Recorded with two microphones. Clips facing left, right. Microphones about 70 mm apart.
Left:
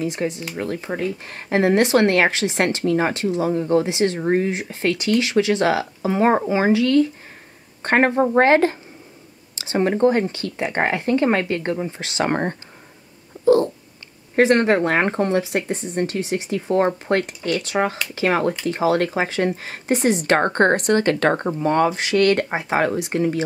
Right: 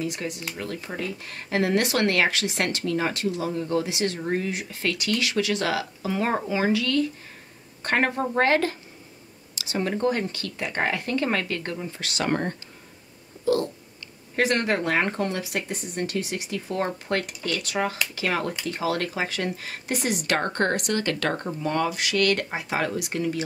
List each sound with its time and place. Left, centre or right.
0.0 s speech: left
14.3 s speech: left